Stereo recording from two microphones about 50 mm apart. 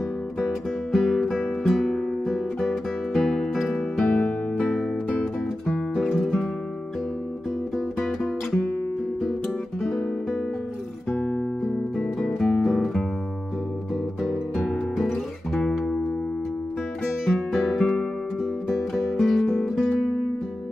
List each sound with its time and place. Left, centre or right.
0.9 s music: centre
4.0 s music: centre
5.2 s music: centre
7.7 s music: centre
9.8 s guitar: centre
11.6 s music: centre
15.0 s music: centre
17.5 s guitar: centre
18.4 s music: centre